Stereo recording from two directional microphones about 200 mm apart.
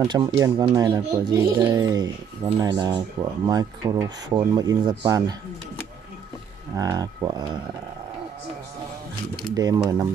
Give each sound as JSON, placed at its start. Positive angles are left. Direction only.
{"t": 0.0, "sound": "speech", "side_deg": -20}
{"t": 6.7, "sound": "speech", "side_deg": -15}
{"t": 9.5, "sound": "speech", "side_deg": -20}